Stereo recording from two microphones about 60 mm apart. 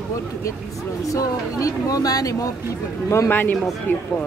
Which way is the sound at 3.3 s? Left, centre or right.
Left.